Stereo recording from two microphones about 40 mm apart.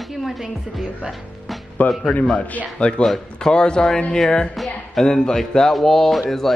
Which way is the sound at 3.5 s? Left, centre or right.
Left.